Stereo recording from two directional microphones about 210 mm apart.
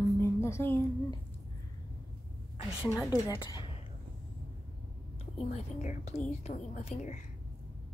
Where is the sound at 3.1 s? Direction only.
20° left (ahead or behind).